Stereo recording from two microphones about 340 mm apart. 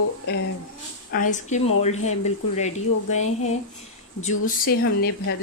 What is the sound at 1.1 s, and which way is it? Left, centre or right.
Speech, left.